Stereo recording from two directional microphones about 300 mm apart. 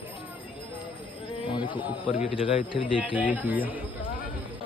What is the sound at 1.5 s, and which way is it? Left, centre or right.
A man's voice, centre.